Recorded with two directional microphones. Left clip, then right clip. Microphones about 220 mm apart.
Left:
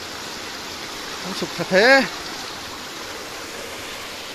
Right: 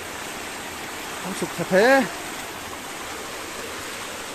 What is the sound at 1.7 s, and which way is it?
Speech, 5° right (ahead or behind).